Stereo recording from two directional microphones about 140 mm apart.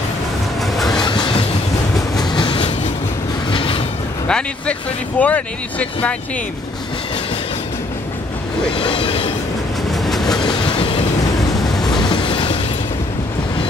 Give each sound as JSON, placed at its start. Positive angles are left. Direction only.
{"t": 0.7, "sound": "train", "side_deg": 0}
{"t": 1.0, "sound": "train", "side_deg": 30}
{"t": 3.4, "sound": "a sound", "side_deg": 40}
{"t": 4.3, "sound": "speech", "side_deg": 5}
{"t": 8.7, "sound": "train", "side_deg": 40}
{"t": 9.8, "sound": "train", "side_deg": 0}
{"t": 10.4, "sound": "train", "side_deg": 40}
{"t": 11.9, "sound": "train", "side_deg": 30}